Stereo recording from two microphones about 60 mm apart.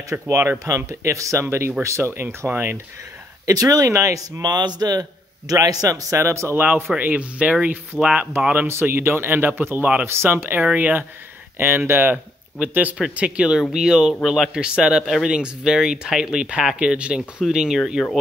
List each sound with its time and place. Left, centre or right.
0.3 s speech: right
0.7 s speech: right
1.4 s speech: right
2.2 s speech: right
3.4 s a man's voice: right
6.2 s speech: right
6.5 s speech: right
8.8 s speech: right
10.0 s speech: right
10.6 s speech: right
11.5 s speech: right
12.5 s speech: right; by 18.0 s centre